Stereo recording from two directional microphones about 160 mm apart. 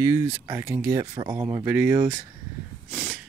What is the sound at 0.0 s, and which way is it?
Speech, 15° right (ahead or behind).